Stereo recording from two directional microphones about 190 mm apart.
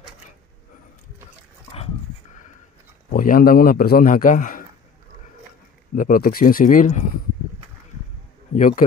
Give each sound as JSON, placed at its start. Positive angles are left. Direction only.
{"t": 3.1, "sound": "a man's voice", "side_deg": 50}
{"t": 5.9, "sound": "a man's voice", "side_deg": 45}
{"t": 8.5, "sound": "speech", "side_deg": 40}